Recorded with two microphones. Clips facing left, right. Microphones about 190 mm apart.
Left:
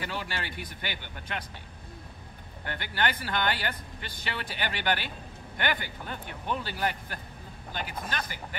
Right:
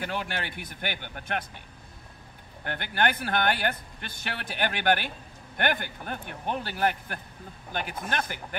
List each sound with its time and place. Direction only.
0.0 s a man's voice: 55° right (ahead or behind)
2.6 s a man's voice: 55° right (ahead or behind)